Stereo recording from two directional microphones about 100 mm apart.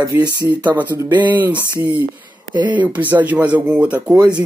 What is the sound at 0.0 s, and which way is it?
Speech, 45° right (ahead or behind).